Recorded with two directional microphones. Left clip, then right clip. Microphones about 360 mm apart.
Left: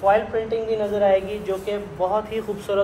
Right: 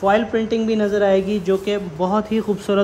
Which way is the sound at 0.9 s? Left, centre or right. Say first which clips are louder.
Right 1 dB; right.